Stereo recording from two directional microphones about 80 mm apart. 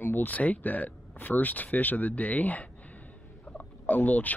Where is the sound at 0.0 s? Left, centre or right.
Left.